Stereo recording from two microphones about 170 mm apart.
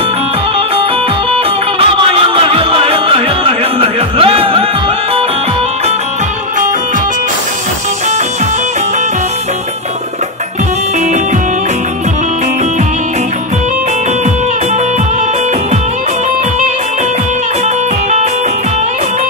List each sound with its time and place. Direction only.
2.1 s music: 30° right (ahead or behind)